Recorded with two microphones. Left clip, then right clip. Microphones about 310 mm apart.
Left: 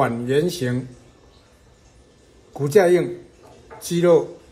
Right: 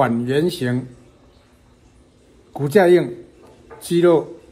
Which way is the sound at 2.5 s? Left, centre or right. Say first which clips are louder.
Right 2 dB; centre.